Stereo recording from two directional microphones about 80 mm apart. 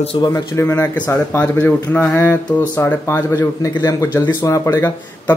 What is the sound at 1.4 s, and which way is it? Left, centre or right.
Speech, left.